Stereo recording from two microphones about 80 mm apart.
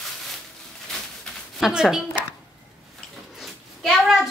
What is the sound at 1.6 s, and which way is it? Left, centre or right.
Speech, centre.